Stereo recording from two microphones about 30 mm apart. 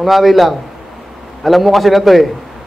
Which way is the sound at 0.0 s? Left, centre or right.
Centre.